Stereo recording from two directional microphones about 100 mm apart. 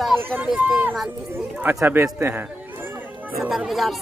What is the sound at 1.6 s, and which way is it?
Speech, 20° right (ahead or behind).